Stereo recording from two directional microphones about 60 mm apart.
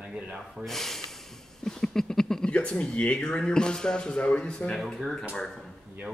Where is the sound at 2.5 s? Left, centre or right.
Centre.